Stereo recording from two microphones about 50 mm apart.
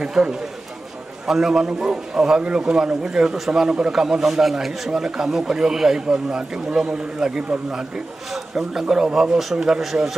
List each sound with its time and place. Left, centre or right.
0.0 s a man's voice: centre